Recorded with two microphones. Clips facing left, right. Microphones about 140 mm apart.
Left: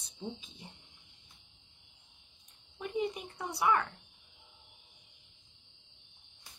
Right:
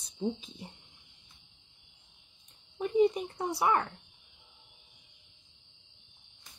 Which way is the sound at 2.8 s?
35° right (ahead or behind).